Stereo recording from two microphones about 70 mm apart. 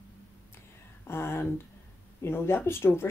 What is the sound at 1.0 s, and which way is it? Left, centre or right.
Speech, left.